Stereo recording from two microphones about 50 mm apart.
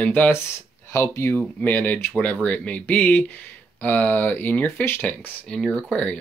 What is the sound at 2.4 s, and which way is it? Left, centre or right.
Speech, left.